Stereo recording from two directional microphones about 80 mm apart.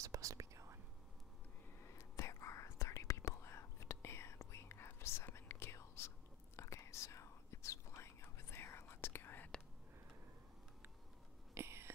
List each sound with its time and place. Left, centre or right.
0.0 s whispering: right
2.0 s whispering: left
11.5 s whispering: right